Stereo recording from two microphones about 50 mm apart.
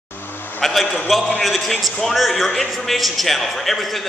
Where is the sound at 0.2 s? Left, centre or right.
Left.